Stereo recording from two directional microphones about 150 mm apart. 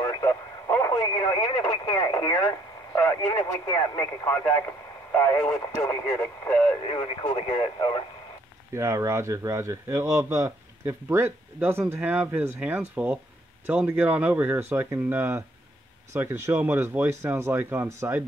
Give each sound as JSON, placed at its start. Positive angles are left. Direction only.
{"t": 0.0, "sound": "radio", "side_deg": 25}
{"t": 2.0, "sound": "speech", "side_deg": 20}
{"t": 6.8, "sound": "speech", "side_deg": 35}
{"t": 8.7, "sound": "speech", "side_deg": -20}